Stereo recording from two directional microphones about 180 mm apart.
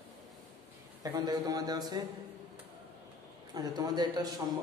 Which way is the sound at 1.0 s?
20° right (ahead or behind).